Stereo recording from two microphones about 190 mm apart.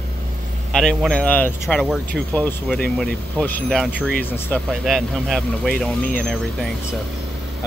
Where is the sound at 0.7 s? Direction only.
Centre (ahead or behind).